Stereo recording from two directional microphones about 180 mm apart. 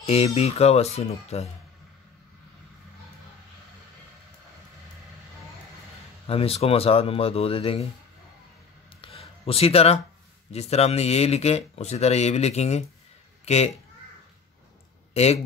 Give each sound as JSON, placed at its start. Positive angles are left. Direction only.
{"t": 0.0, "sound": "speech", "side_deg": 35}
{"t": 6.2, "sound": "speech", "side_deg": 35}
{"t": 9.0, "sound": "a sound", "side_deg": 35}
{"t": 10.5, "sound": "speech", "side_deg": 35}
{"t": 15.2, "sound": "speech", "side_deg": 35}